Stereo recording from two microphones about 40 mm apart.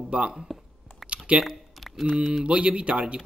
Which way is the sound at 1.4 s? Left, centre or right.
Centre.